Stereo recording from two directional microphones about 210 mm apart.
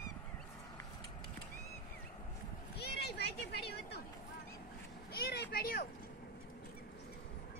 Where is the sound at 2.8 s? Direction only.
50° left (ahead or behind).